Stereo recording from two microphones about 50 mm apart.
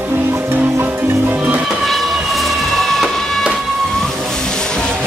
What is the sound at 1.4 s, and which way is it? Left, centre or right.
Music, right.